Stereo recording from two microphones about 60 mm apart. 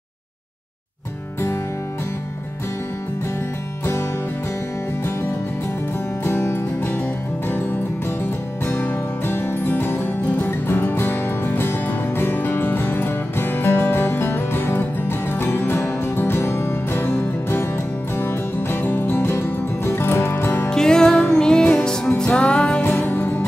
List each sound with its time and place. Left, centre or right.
6.2 s music: left
8.2 s music: left
20.7 s music: centre
22.8 s music: left